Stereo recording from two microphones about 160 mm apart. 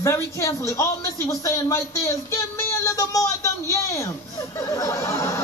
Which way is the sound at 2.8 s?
20° left (ahead or behind).